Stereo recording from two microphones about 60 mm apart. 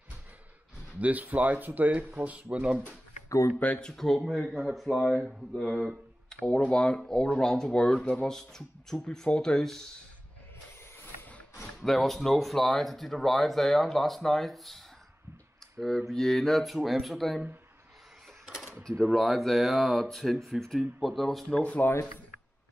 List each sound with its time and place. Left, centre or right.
0.9 s speech: right
3.3 s speech: left
3.5 s speech: left
3.8 s speech: centre
6.4 s speech: centre
11.8 s speech: centre
16.1 s speech: centre
19.1 s speech: centre
21.5 s speech: centre